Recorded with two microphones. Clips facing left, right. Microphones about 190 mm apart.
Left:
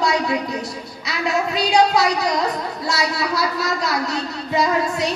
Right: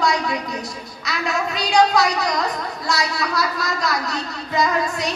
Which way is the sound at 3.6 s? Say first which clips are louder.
Left 2 dB; 30° left (ahead or behind).